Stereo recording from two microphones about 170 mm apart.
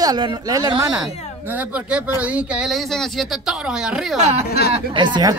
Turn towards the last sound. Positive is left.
turn(degrees=-25)  # may be behind; listen again after turning